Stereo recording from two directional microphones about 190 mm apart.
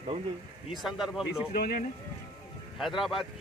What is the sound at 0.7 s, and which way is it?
Speech, centre (ahead or behind).